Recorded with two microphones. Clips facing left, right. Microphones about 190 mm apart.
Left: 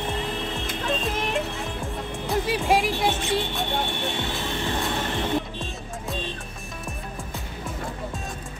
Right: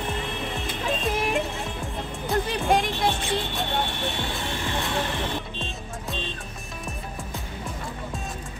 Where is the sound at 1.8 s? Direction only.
Centre (ahead or behind).